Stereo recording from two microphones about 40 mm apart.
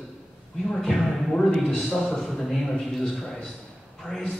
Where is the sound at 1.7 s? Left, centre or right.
Centre.